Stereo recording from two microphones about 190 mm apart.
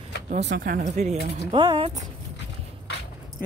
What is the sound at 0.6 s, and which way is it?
Speech, 45° right (ahead or behind).